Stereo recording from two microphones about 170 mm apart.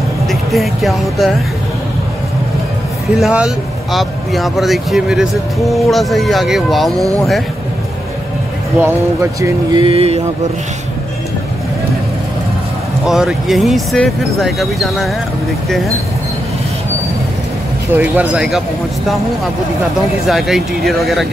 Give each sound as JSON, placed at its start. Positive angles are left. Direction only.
{"t": 0.3, "sound": "speech", "side_deg": 0}
{"t": 3.2, "sound": "speech", "side_deg": -5}
{"t": 8.8, "sound": "speech", "side_deg": -20}
{"t": 9.8, "sound": "speech", "side_deg": -35}
{"t": 13.0, "sound": "speech", "side_deg": -5}
{"t": 17.9, "sound": "speech", "side_deg": -10}
{"t": 20.2, "sound": "speech", "side_deg": 0}